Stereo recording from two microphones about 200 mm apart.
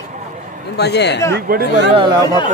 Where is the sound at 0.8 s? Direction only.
55° left (ahead or behind).